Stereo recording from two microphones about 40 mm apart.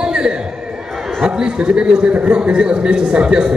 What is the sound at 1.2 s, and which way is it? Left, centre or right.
A man's voice, centre.